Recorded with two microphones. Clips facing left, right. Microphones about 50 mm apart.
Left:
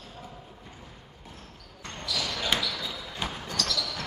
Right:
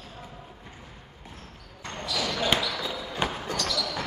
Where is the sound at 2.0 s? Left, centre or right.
Centre.